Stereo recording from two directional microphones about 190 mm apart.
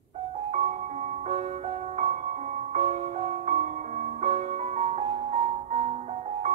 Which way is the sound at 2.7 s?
35° right (ahead or behind).